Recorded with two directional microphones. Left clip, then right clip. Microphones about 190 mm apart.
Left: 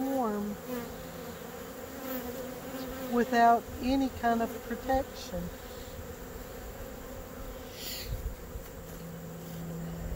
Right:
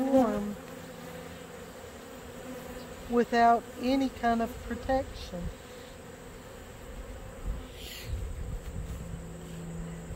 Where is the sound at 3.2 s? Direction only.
35° right (ahead or behind).